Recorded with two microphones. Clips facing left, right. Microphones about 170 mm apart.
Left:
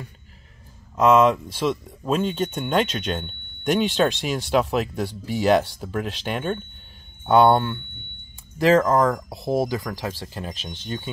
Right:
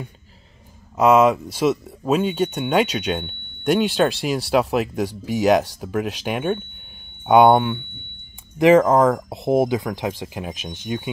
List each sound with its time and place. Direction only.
0.9 s speech: 10° right (ahead or behind)